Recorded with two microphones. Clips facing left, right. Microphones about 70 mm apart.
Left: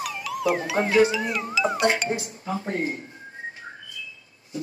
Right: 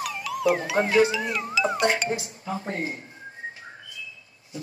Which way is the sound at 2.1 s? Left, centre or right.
Left.